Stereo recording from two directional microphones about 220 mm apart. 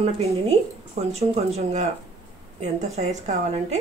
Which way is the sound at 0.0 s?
25° right (ahead or behind).